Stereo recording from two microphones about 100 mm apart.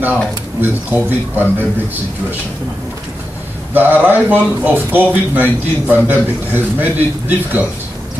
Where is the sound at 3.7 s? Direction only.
20° right (ahead or behind).